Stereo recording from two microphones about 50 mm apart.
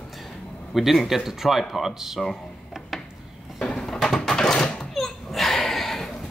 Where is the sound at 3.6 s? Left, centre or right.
Centre.